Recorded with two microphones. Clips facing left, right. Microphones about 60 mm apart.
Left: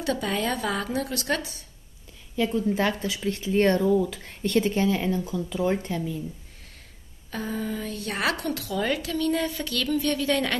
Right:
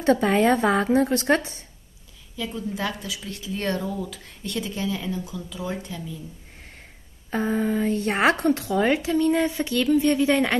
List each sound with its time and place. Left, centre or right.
0.0 s a woman's voice: right
2.3 s speech: left
7.2 s a woman's voice: right